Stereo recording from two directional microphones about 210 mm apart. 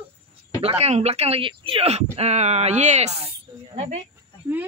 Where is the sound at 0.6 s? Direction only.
30° right (ahead or behind).